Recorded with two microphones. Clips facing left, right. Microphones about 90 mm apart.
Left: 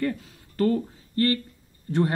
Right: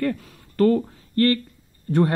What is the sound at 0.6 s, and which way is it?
Speech, 45° right (ahead or behind).